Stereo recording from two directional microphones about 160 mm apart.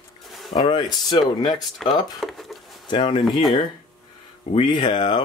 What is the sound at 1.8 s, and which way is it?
Speech, centre (ahead or behind).